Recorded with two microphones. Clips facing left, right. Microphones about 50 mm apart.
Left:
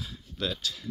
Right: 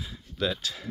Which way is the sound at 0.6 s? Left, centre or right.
Right.